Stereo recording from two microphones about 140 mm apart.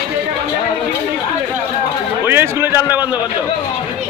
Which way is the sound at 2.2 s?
15° right (ahead or behind).